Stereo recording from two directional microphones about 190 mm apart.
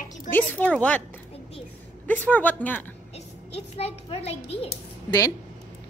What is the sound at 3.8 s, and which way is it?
Speech, 30° left (ahead or behind).